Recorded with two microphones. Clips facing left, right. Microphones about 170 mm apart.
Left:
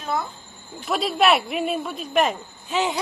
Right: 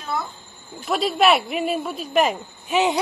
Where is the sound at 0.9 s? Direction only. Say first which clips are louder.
Right 1 dB; centre (ahead or behind).